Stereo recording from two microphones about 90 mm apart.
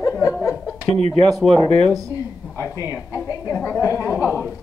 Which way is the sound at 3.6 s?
35° left (ahead or behind).